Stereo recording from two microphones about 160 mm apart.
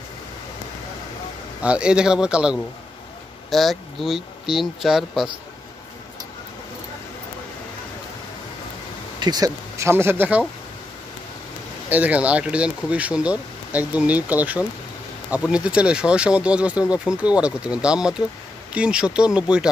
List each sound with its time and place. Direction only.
1.6 s speech: 5° right (ahead or behind)
9.2 s speech: 25° right (ahead or behind)
11.9 s speech: 10° right (ahead or behind)